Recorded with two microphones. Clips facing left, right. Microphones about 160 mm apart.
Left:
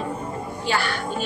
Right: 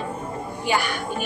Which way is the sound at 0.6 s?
15° right (ahead or behind).